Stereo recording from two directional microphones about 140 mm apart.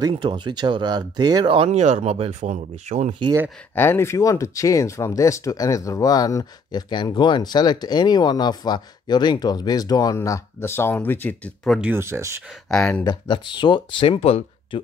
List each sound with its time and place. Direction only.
0.1 s speech: 35° right (ahead or behind)
1.7 s speech: 55° right (ahead or behind)
3.7 s speech: 15° left (ahead or behind)
11.8 s speech: 15° right (ahead or behind)
12.6 s speech: 5° left (ahead or behind)
13.0 s speech: 30° left (ahead or behind)